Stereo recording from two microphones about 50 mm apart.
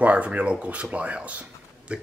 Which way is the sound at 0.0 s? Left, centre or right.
Right.